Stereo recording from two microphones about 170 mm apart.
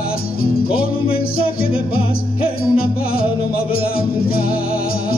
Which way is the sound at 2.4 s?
60° left (ahead or behind).